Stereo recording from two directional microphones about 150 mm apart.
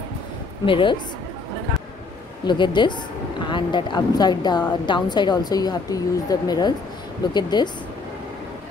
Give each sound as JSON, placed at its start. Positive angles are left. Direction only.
{"t": 0.7, "sound": "a woman's voice", "side_deg": 35}
{"t": 2.4, "sound": "a woman's voice", "side_deg": 30}